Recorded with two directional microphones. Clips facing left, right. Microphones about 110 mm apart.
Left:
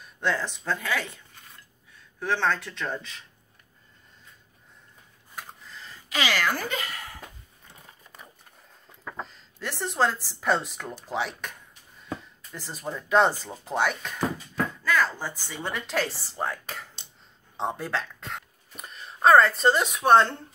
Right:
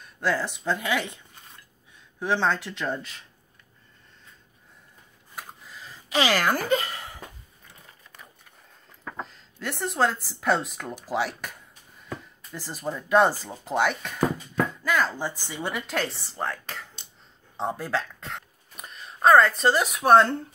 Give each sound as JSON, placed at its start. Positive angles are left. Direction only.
{"t": 0.0, "sound": "speech", "side_deg": -5}
{"t": 5.3, "sound": "a sound", "side_deg": -10}
{"t": 6.1, "sound": "speech", "side_deg": -40}
{"t": 9.0, "sound": "speech", "side_deg": 0}
{"t": 12.5, "sound": "speech", "side_deg": -5}
{"t": 14.9, "sound": "speech", "side_deg": -15}
{"t": 15.9, "sound": "speech", "side_deg": 0}